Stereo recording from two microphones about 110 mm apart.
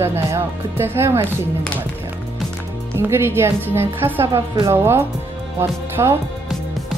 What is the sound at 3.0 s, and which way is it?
A woman's voice, 20° right (ahead or behind).